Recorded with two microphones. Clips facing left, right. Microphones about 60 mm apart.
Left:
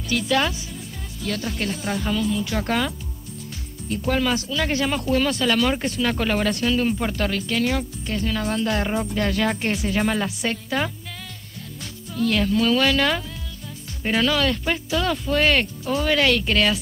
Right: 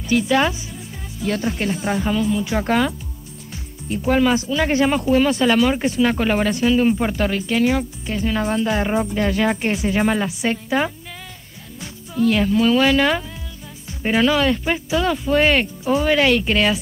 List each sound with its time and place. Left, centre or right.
0.1 s speech: right
4.1 s speech: centre